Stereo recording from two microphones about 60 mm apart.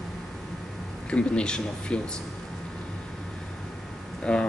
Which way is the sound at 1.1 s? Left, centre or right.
Centre.